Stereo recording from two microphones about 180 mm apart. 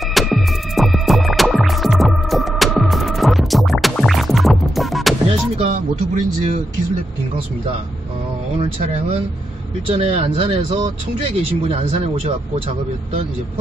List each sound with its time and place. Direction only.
0.1 s music: centre (ahead or behind)
5.6 s music: 45° right (ahead or behind)
9.8 s speech: 30° right (ahead or behind)